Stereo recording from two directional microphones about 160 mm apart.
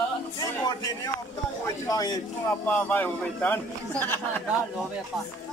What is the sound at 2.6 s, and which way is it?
A man's voice, 10° left (ahead or behind).